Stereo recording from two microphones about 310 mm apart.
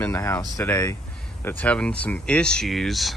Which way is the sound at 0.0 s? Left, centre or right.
Centre.